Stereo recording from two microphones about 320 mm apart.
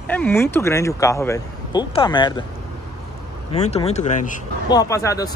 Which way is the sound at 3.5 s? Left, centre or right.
Centre.